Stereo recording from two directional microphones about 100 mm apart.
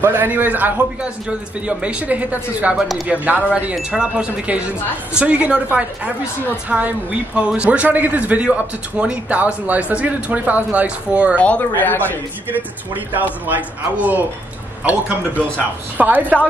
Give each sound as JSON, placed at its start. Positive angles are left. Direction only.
{"t": 0.0, "sound": "a man's voice", "side_deg": -20}
{"t": 11.3, "sound": "speech", "side_deg": 15}
{"t": 12.9, "sound": "a man's voice", "side_deg": -15}